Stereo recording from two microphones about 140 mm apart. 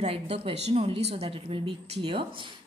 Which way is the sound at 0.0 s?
45° right (ahead or behind).